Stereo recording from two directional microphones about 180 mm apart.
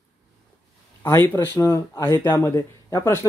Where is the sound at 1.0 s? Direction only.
15° left (ahead or behind).